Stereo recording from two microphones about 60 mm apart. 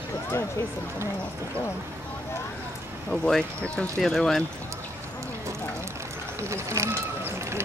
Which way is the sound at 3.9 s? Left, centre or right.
Centre.